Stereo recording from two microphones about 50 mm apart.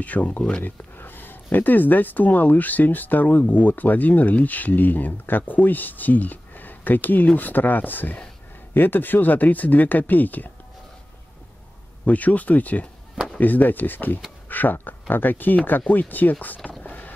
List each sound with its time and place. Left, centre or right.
0.0 s speech: left
0.4 s speech: centre
0.7 s speech: left
12.0 s speech: left
16.8 s vehicle: left